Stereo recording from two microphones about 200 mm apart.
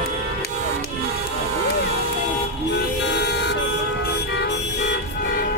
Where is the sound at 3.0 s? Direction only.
60° left (ahead or behind).